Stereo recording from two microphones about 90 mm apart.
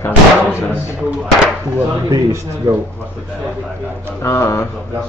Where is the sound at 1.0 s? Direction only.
10° right (ahead or behind).